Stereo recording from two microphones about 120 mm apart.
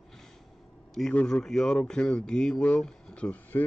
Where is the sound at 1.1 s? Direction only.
10° left (ahead or behind).